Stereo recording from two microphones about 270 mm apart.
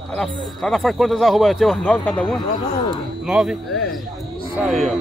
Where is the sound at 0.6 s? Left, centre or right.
Centre.